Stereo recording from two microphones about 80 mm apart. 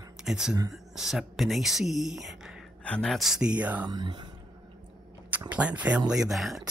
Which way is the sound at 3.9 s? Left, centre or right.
Right.